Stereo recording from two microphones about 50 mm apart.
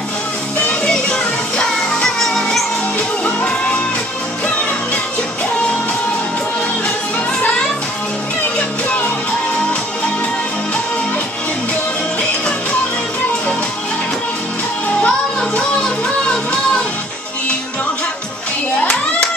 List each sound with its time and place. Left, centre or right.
0.7 s music: centre
15.0 s music: centre